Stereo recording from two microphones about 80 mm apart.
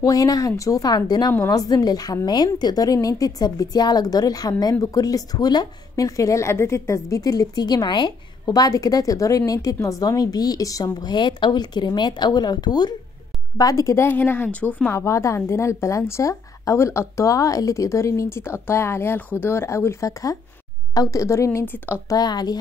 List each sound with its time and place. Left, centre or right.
0.0 s a woman's voice: left
13.6 s a woman's voice: left
13.9 s speech: left
14.9 s a woman's voice: left
21.6 s speech: left
22.1 s a woman's voice: left